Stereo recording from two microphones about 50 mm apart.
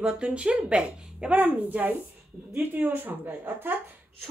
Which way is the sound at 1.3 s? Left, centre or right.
Right.